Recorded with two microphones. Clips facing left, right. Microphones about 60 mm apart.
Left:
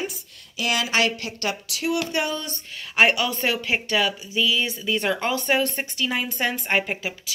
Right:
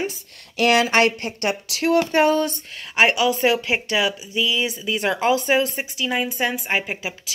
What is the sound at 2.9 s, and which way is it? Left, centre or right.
A woman's voice, centre.